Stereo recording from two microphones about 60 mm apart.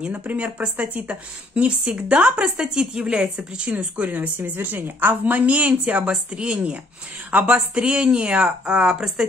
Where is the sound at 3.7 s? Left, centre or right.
Right.